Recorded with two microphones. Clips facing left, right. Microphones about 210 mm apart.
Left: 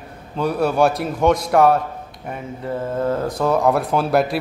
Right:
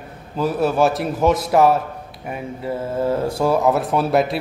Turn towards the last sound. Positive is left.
turn(degrees=0)  # may be behind; listen again after turning